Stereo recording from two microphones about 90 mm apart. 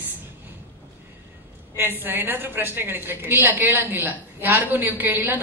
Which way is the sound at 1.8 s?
25° right (ahead or behind).